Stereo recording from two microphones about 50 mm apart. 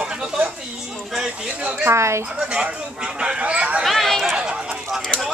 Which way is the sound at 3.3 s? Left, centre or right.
Right.